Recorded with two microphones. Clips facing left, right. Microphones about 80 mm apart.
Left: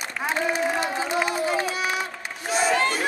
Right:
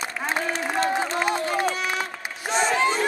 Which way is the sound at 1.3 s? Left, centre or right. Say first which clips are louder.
Even; centre.